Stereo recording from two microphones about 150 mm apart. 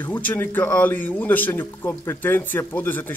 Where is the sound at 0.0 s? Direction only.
10° left (ahead or behind).